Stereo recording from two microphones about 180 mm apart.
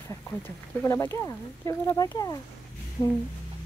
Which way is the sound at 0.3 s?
15° left (ahead or behind).